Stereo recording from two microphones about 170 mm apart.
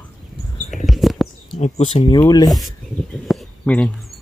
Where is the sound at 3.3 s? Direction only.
5° left (ahead or behind).